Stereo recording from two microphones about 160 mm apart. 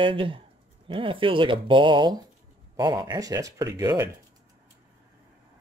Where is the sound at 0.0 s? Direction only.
30° right (ahead or behind).